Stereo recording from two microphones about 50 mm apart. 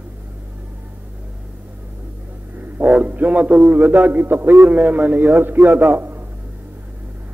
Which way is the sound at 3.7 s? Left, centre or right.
Right.